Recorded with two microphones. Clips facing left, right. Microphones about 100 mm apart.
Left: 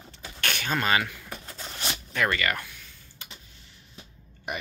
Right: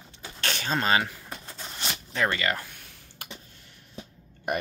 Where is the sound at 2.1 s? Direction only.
25° right (ahead or behind).